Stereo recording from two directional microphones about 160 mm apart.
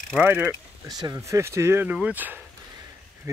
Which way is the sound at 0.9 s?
25° right (ahead or behind).